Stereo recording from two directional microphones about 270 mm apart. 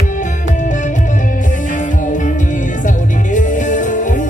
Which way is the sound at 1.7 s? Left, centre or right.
Left.